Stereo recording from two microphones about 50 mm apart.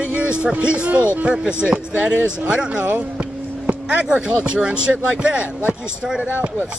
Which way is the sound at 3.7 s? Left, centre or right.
Right.